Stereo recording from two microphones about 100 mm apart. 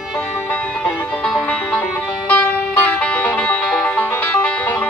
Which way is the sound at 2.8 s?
10° left (ahead or behind).